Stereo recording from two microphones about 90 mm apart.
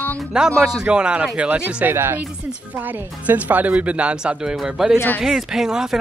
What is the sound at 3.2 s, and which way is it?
Speech, 15° right (ahead or behind).